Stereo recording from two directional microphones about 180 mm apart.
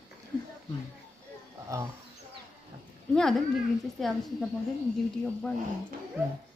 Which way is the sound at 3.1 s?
5° left (ahead or behind).